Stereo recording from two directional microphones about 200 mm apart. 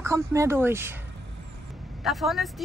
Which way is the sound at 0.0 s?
15° right (ahead or behind).